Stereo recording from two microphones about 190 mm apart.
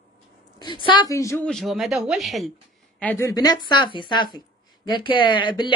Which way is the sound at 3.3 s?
20° left (ahead or behind).